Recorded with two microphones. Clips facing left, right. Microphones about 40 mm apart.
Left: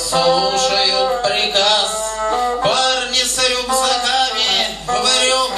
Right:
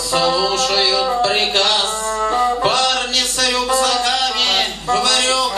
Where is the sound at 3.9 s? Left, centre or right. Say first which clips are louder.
Left 1 dB; left.